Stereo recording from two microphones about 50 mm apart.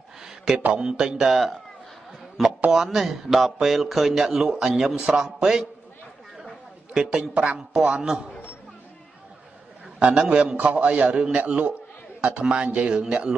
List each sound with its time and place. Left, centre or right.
0.7 s a man's voice: centre
2.4 s a sound: centre
2.7 s a man's voice: centre
6.9 s a woman's voice: centre
9.9 s speech: centre